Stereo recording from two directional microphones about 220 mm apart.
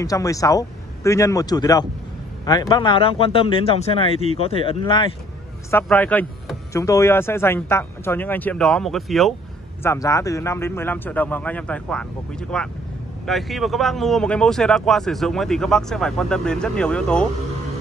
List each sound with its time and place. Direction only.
0.0 s speech: 15° left (ahead or behind)
5.7 s speech: 10° left (ahead or behind)
9.8 s speech: 15° left (ahead or behind)